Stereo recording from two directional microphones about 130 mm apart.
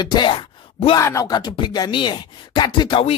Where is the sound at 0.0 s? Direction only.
35° left (ahead or behind).